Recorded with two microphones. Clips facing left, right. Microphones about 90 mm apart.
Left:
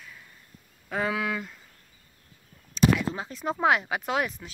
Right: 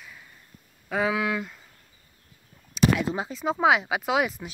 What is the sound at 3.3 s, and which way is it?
Speech, centre (ahead or behind).